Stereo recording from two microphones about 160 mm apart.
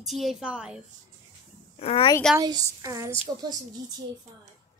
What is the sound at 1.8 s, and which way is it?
Speech, 40° left (ahead or behind).